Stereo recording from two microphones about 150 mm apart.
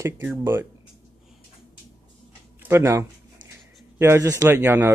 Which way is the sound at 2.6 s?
15° right (ahead or behind).